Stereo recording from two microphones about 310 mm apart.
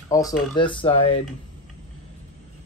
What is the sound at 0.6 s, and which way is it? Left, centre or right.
Speech, centre.